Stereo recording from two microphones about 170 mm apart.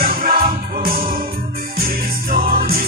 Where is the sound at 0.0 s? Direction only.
55° right (ahead or behind).